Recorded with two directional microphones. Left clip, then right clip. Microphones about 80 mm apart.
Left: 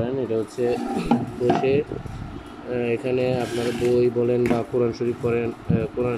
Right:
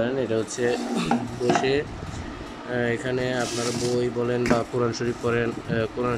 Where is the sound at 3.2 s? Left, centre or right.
Left.